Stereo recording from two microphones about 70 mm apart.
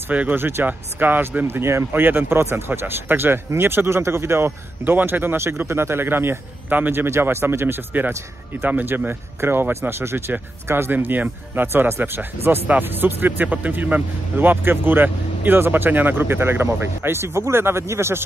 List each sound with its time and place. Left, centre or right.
0.1 s speech: right